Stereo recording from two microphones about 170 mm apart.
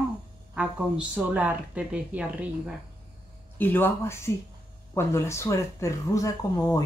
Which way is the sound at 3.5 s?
10° left (ahead or behind).